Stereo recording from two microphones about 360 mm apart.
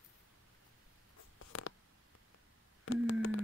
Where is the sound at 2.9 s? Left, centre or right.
Left.